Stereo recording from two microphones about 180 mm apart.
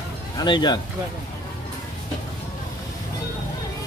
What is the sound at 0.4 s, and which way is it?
Speech, 25° left (ahead or behind).